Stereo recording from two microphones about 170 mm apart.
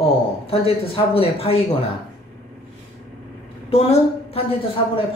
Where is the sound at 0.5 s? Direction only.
35° left (ahead or behind).